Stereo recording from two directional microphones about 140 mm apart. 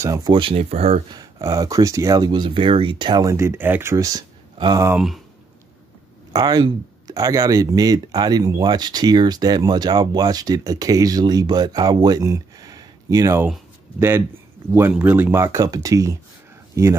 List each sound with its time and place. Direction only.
0.0 s speech: 25° right (ahead or behind); by 1.0 s 45° right (ahead or behind)
1.1 s speech: 25° right (ahead or behind)
4.9 s speech: centre (ahead or behind)
6.3 s a man's voice: 30° right (ahead or behind)